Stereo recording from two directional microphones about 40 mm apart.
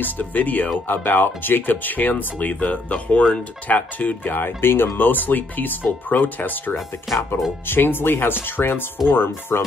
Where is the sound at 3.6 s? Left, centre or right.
Left.